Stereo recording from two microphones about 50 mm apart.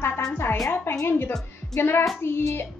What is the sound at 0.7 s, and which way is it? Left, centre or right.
A woman's voice, left.